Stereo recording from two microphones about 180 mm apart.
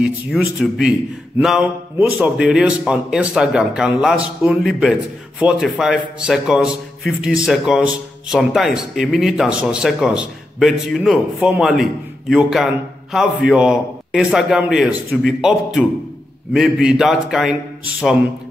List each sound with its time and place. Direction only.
0.0 s speech: 5° right (ahead or behind)